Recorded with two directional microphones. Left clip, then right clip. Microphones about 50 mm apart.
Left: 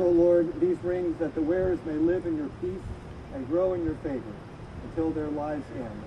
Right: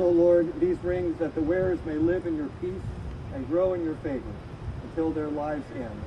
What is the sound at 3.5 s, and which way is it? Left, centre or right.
Speech, left.